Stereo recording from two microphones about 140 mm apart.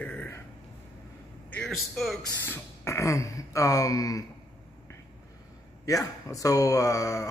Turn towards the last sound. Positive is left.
turn(degrees=25)  # may be behind; listen again after turning